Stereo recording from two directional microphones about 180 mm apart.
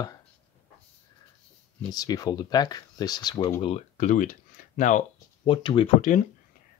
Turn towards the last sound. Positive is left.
turn(degrees=45)  # may be behind; listen again after turning